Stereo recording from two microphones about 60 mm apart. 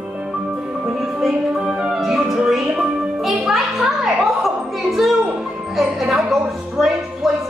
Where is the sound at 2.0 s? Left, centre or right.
Centre.